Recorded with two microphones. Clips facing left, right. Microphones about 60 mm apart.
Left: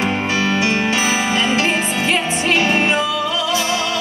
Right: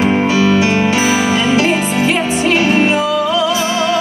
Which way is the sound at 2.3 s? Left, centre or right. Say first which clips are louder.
Right 4 dB; left.